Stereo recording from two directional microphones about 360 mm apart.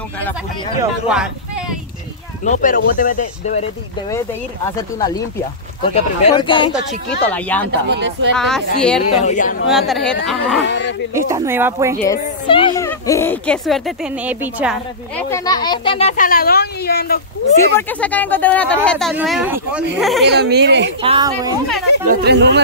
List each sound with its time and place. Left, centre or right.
0.7 s speech: centre
2.4 s speech: left
4.7 s speech: centre
7.8 s speech: right
8.4 s speech: centre
9.2 s speech: left
9.7 s speech: centre
10.7 s a sound: left
11.1 s speech: centre
12.1 s speech: centre
17.6 s speech: centre
20.2 s speech: right
21.0 s speech: centre
22.0 s speech: right